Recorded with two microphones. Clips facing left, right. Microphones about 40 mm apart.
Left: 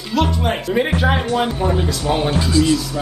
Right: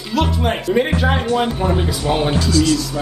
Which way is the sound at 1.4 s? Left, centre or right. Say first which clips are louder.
Even; centre.